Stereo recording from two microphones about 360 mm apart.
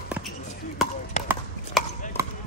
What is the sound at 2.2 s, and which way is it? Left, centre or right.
Basketball bounce, centre.